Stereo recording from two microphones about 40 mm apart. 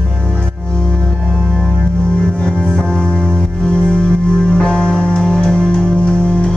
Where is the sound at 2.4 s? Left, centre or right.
Centre.